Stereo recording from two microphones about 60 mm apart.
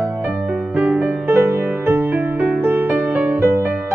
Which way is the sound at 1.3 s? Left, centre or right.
Right.